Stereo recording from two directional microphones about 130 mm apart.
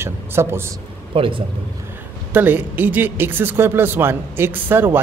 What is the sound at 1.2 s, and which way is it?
Speech, 40° right (ahead or behind).